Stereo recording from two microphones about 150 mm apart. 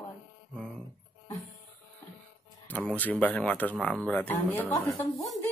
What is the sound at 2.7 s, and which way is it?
Speech, 10° left (ahead or behind).